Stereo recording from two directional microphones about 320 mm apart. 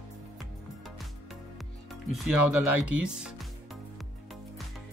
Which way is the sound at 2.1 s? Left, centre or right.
Centre.